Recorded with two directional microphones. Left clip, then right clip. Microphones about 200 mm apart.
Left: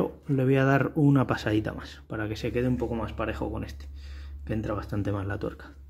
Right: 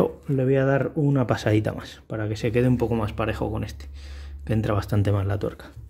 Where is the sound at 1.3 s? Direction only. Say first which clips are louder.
Right 4 dB; 10° right (ahead or behind).